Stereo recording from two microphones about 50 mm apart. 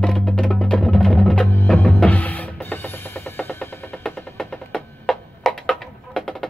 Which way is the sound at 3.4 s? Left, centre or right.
Left.